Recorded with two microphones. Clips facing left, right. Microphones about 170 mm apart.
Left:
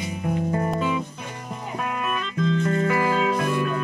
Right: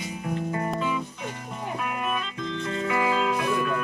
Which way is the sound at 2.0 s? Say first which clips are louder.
Left 4 dB; 55° left (ahead or behind).